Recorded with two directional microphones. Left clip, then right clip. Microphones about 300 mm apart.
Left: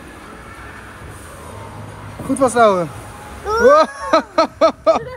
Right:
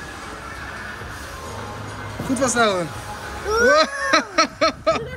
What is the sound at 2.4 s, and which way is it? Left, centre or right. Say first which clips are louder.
Speech: left 7 dB; centre.